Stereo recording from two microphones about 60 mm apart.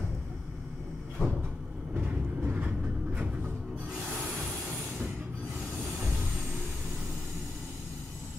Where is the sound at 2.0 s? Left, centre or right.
Right.